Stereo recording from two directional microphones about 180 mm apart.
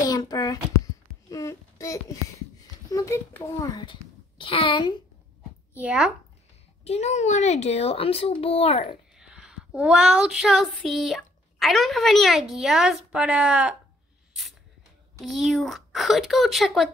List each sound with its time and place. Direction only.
0.0 s a sound: 20° left (ahead or behind)
2.9 s a child's voice: 15° left (ahead or behind)
5.8 s a woman's voice: 5° right (ahead or behind)
6.8 s a child's voice: 35° left (ahead or behind)
9.2 s child singing: 5° right (ahead or behind)
15.1 s a woman's voice: centre (ahead or behind)